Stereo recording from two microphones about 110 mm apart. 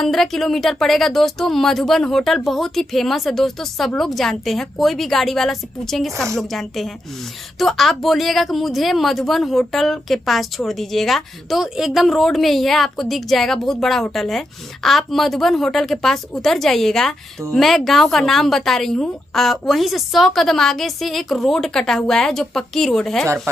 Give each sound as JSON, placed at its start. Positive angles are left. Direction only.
{"t": 0.0, "sound": "a woman's voice", "side_deg": 5}
{"t": 23.2, "sound": "speech", "side_deg": -25}